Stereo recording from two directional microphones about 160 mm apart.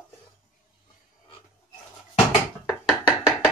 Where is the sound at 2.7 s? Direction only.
5° right (ahead or behind).